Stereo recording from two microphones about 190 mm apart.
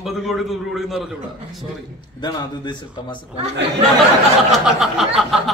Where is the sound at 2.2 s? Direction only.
25° left (ahead or behind).